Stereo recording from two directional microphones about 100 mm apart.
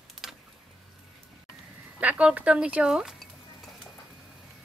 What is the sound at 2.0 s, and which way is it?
Speech, 15° right (ahead or behind).